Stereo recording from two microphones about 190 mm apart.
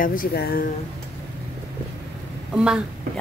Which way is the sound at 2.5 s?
5° right (ahead or behind).